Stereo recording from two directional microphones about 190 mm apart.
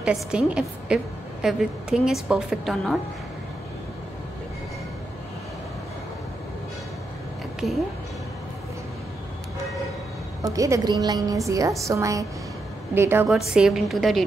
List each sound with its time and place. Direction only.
0.0 s a woman's voice: 5° right (ahead or behind)
7.6 s a woman's voice: centre (ahead or behind)
10.4 s a woman's voice: 15° right (ahead or behind); by 14.2 s centre (ahead or behind)